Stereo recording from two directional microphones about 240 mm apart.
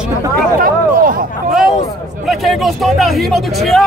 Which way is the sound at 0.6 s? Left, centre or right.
Right.